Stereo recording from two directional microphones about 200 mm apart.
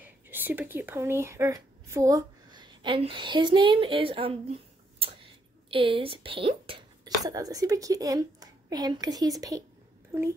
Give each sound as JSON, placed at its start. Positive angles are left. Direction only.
{"t": 0.0, "sound": "a woman's voice", "side_deg": -10}